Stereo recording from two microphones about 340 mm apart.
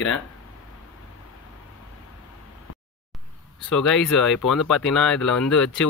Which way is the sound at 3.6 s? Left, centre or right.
Centre.